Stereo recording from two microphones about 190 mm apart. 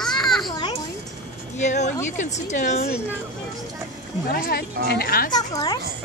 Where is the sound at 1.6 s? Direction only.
40° left (ahead or behind).